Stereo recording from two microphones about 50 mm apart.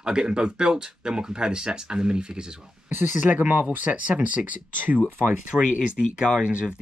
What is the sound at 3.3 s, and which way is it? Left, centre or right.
Speech, right.